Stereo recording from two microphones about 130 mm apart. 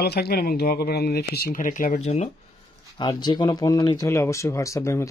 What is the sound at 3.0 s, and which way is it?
Speech, 35° left (ahead or behind).